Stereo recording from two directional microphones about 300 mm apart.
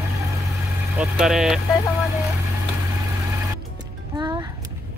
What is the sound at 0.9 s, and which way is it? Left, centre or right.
Speech, centre.